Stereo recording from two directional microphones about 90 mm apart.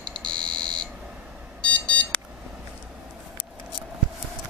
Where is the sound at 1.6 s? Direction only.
10° left (ahead or behind).